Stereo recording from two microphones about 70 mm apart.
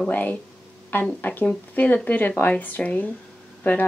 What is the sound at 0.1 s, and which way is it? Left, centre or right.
A woman's voice, left.